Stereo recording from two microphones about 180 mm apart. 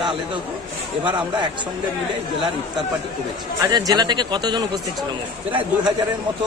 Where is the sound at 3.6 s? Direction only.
20° right (ahead or behind).